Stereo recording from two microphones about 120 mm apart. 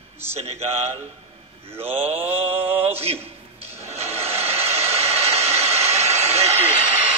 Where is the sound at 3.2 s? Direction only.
60° right (ahead or behind).